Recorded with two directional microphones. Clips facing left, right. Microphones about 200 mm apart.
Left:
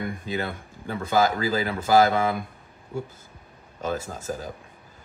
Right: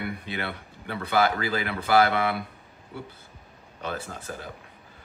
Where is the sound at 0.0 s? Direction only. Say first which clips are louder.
Left 3 dB; 40° left (ahead or behind).